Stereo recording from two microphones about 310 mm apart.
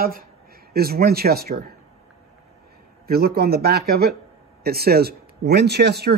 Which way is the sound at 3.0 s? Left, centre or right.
Right.